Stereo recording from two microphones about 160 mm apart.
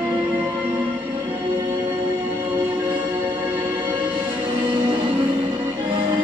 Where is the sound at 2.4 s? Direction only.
10° right (ahead or behind).